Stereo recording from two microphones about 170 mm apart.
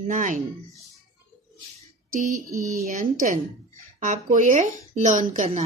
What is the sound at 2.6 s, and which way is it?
A woman's voice, 55° right (ahead or behind).